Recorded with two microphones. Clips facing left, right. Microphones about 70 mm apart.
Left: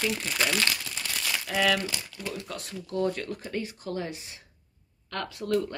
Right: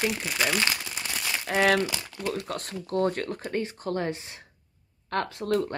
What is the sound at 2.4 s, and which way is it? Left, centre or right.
Speech, right.